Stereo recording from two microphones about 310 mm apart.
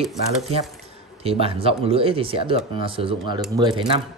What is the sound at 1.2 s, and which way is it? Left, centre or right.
Speech, centre.